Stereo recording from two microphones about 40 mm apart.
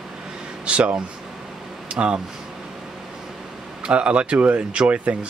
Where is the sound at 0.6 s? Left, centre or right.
Right.